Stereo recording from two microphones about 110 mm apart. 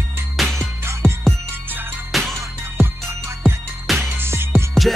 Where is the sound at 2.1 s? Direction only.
Centre (ahead or behind).